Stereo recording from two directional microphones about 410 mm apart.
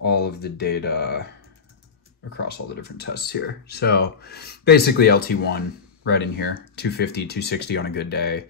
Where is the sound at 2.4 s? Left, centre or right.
Left.